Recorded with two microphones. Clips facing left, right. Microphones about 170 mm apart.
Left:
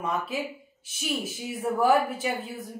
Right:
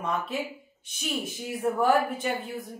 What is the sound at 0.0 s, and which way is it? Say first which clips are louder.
Speech: even; 5° left (ahead or behind).